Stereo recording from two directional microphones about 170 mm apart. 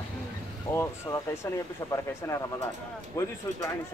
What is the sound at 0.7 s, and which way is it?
Speech, 15° left (ahead or behind).